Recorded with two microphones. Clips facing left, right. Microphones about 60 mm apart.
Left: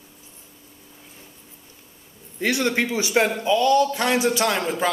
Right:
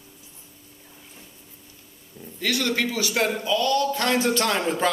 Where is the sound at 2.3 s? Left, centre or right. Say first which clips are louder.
Left 3 dB; left.